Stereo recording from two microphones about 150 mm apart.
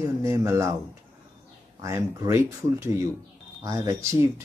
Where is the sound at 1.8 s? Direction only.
20° right (ahead or behind).